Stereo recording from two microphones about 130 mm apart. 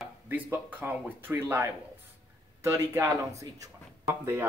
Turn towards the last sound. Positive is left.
turn(degrees=-25)  # may be behind; listen again after turning